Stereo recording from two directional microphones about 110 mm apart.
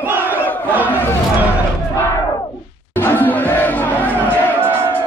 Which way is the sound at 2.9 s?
20° left (ahead or behind).